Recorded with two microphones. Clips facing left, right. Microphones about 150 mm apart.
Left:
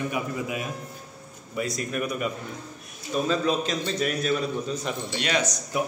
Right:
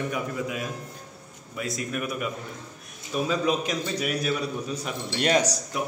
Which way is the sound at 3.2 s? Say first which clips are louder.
Even; 15° right (ahead or behind).